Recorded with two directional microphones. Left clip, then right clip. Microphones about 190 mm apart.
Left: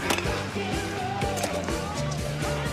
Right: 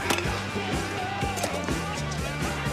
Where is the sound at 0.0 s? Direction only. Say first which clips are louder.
Even; centre (ahead or behind).